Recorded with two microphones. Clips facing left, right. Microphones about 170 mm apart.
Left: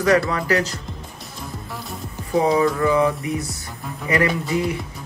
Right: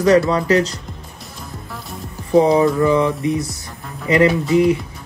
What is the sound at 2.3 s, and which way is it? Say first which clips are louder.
Speech: right 5 dB; 25° right (ahead or behind).